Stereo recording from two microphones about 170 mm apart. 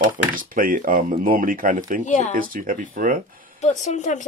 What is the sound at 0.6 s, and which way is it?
Speech, 55° right (ahead or behind).